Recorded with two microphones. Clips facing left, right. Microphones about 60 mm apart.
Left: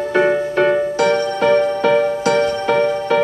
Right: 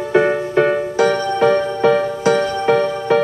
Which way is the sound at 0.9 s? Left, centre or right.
Right.